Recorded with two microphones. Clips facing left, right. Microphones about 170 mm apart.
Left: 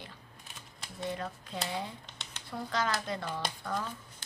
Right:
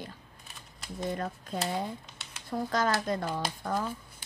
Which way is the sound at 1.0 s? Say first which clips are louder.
Right 3 dB; 45° right (ahead or behind).